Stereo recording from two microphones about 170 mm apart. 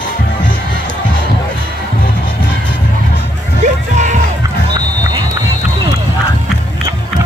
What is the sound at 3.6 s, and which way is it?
Music, 45° right (ahead or behind).